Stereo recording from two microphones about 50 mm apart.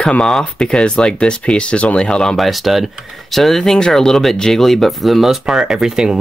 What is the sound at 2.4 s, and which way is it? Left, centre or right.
Speech, centre.